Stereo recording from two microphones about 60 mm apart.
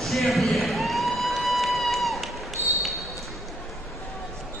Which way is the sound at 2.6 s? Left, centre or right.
Right.